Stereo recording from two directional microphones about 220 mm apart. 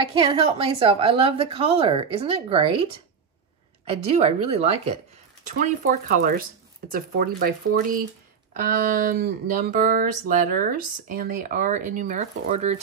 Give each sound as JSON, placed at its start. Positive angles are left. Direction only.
{"t": 0.1, "sound": "a woman's voice", "side_deg": -25}
{"t": 4.1, "sound": "a woman's voice", "side_deg": -25}
{"t": 5.4, "sound": "speech", "side_deg": -35}